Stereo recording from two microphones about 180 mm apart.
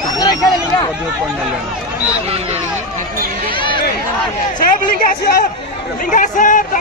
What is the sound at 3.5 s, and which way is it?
Speech, 25° left (ahead or behind).